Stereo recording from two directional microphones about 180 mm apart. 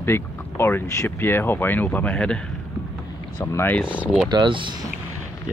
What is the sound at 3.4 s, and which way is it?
Speech, 15° left (ahead or behind).